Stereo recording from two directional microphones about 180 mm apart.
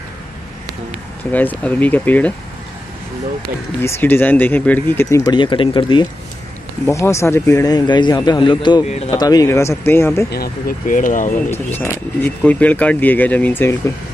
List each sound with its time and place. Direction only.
1.3 s speech: 10° left (ahead or behind)
3.8 s speech: 10° left (ahead or behind)
5.3 s a man's voice: 25° left (ahead or behind)
6.9 s a man's voice: 15° left (ahead or behind)
8.8 s speech: 40° left (ahead or behind)
9.1 s speech: 20° left (ahead or behind)
10.3 s speech: 55° left (ahead or behind)
11.5 s speech: 15° left (ahead or behind)